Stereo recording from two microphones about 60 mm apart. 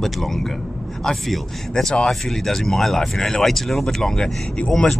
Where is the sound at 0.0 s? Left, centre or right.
Centre.